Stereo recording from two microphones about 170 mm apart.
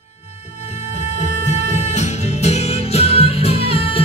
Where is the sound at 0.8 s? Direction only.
45° left (ahead or behind).